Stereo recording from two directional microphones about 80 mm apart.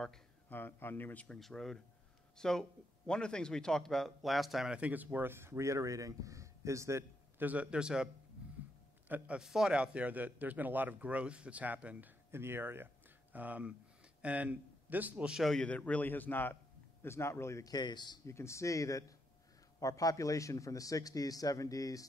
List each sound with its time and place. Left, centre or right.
0.5 s a man's voice: left
1.4 s a man's voice: centre
4.7 s speech: centre; by 7.1 s right
7.3 s a man's voice: centre
9.4 s a man's voice: centre
12.3 s a man's voice: right
15.3 s speech: centre
15.6 s a man's voice: centre; by 17.6 s left
17.6 s speech: left
18.2 s a man's voice: left